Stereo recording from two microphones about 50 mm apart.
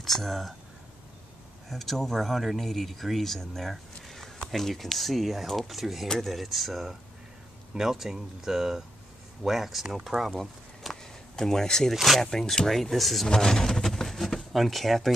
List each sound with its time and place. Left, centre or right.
0.0 s speech: centre
1.7 s speech: centre
10.3 s a sound: centre
11.9 s speech: centre
13.3 s speech: centre